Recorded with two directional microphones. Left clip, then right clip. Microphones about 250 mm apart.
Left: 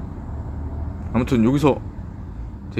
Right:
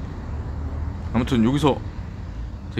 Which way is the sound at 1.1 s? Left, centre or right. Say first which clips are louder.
Left 2 dB; centre.